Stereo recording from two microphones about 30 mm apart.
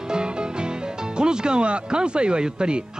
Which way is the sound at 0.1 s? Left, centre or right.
Right.